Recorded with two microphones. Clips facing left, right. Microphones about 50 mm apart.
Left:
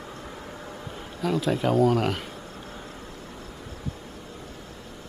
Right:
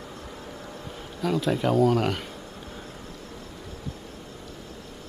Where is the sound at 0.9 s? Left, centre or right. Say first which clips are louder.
Even; centre.